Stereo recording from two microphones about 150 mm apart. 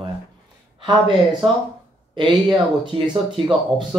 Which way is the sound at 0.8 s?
35° right (ahead or behind).